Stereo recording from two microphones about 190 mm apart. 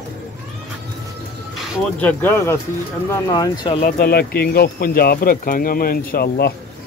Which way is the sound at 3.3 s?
20° left (ahead or behind).